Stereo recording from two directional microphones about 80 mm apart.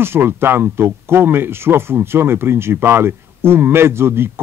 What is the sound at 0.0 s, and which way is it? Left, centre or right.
Speech, right.